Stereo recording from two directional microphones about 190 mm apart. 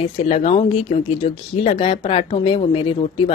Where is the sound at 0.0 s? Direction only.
35° left (ahead or behind).